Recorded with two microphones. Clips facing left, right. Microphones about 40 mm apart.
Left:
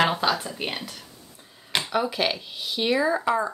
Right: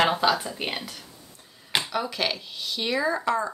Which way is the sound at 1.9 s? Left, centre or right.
Centre.